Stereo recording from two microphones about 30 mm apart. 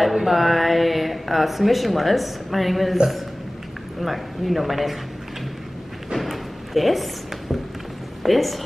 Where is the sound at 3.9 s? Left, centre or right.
Centre.